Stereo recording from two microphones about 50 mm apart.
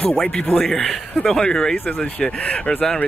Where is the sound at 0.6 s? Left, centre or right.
Centre.